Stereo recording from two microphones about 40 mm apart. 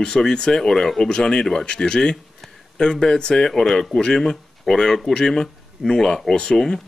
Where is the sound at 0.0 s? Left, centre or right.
Centre.